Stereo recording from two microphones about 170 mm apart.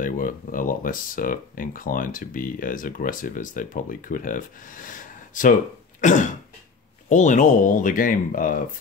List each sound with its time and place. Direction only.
0.0 s speech: 55° left (ahead or behind)
5.9 s cough: 45° left (ahead or behind)
7.1 s speech: 45° left (ahead or behind)